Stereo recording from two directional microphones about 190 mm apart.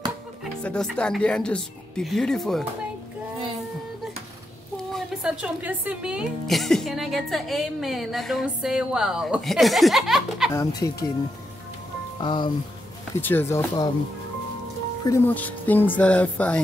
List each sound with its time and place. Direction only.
0.4 s a woman's voice: 5° left (ahead or behind)
4.9 s a woman's voice: 5° right (ahead or behind)
10.5 s speech: 20° left (ahead or behind)
12.2 s speech: 25° left (ahead or behind)
13.2 s speech: 10° left (ahead or behind)
15.0 s speech: 10° left (ahead or behind)